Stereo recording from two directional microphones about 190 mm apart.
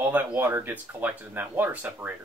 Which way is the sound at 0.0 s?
10° right (ahead or behind).